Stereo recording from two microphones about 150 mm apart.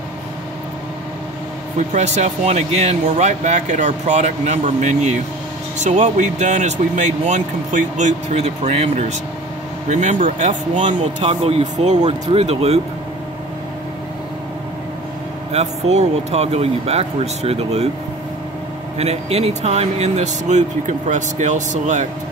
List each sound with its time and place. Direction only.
1.8 s speech: 50° right (ahead or behind)
15.5 s speech: 45° right (ahead or behind)
18.9 s speech: 45° right (ahead or behind)